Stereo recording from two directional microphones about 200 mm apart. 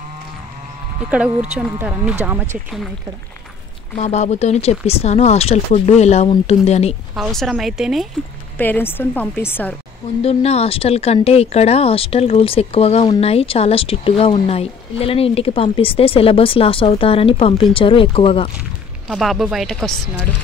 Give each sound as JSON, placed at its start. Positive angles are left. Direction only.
{"t": 1.5, "sound": "speech", "side_deg": -5}
{"t": 4.0, "sound": "speech", "side_deg": 35}
{"t": 7.2, "sound": "speech", "side_deg": 0}
{"t": 8.5, "sound": "a woman's voice", "side_deg": 10}
{"t": 10.2, "sound": "speech", "side_deg": 30}
{"t": 19.0, "sound": "speech", "side_deg": 0}